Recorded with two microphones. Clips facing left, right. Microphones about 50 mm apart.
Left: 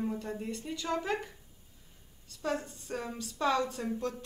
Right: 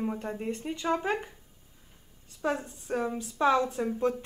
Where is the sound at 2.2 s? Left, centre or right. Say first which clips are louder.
Right 3 dB; right.